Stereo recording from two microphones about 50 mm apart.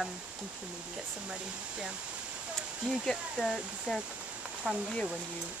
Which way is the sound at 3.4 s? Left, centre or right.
Centre.